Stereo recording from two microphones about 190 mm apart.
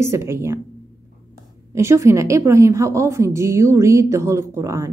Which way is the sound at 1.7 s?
15° right (ahead or behind).